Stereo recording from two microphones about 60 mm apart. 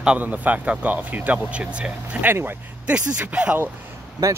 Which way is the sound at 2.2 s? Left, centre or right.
Right.